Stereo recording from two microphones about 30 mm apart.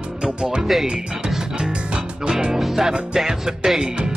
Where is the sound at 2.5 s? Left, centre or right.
Centre.